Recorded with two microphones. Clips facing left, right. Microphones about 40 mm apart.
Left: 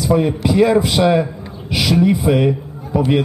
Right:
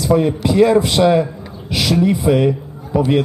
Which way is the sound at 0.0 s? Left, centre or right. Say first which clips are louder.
Right 1 dB; centre.